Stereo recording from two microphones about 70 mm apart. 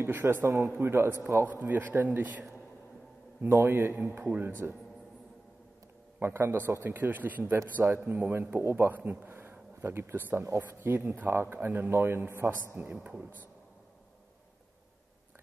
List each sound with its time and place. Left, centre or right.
0.0 s a man's voice: right
3.6 s a man's voice: right
6.1 s a man's voice: right
7.5 s a man's voice: right
8.0 s a man's voice: right
10.9 s a man's voice: right